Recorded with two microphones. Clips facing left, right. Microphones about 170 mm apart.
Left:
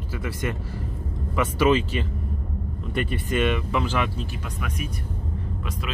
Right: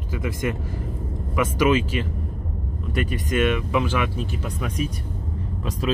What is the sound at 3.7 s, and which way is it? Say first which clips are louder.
Speech: right 2 dB; 10° right (ahead or behind).